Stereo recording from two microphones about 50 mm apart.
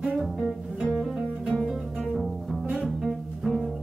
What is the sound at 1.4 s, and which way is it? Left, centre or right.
Bowed string instrument, centre.